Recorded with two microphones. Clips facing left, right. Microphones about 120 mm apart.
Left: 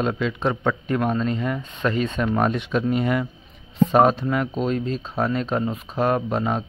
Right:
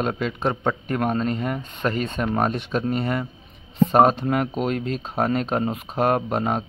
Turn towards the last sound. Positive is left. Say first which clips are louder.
# even
turn(degrees=-50)  # may be behind; listen again after turning